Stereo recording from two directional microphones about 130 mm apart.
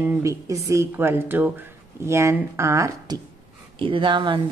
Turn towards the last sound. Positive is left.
turn(degrees=-35)  # may be behind; listen again after turning